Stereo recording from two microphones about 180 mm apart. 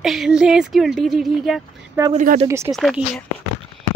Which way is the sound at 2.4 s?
15° right (ahead or behind).